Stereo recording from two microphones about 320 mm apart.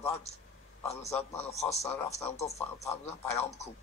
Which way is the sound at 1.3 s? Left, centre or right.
Centre.